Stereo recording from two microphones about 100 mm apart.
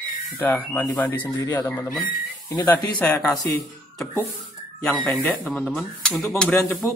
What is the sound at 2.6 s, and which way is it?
Speech, 15° left (ahead or behind).